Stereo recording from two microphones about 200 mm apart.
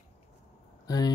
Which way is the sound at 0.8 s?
20° left (ahead or behind).